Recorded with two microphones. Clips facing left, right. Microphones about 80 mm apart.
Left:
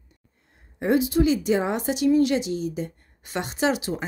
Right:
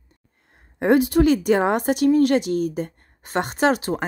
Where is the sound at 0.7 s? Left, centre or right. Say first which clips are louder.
Right 4 dB; right.